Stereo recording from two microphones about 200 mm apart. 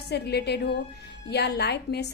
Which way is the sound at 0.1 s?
55° left (ahead or behind).